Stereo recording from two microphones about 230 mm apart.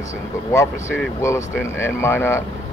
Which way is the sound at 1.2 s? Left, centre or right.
Centre.